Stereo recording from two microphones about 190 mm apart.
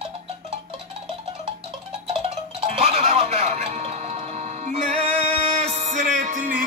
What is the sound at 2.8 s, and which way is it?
Music, 35° right (ahead or behind).